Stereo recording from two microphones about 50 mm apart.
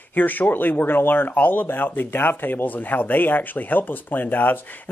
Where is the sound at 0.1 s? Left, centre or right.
Left.